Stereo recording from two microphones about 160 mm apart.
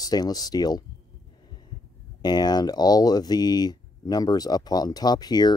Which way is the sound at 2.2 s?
25° left (ahead or behind).